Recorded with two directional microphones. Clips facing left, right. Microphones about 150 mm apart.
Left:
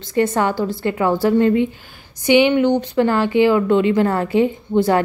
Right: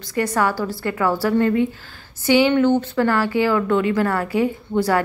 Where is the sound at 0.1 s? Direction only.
25° left (ahead or behind).